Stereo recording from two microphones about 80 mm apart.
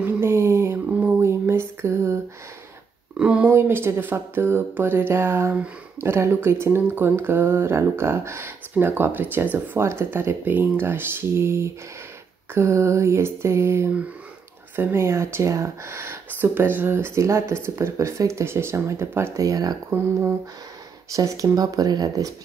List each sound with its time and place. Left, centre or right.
0.0 s a sound: right
3.2 s speech: centre
3.4 s speech: right
19.4 s speech: right
21.1 s speech: right